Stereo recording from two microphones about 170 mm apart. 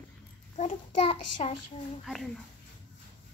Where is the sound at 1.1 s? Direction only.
30° left (ahead or behind).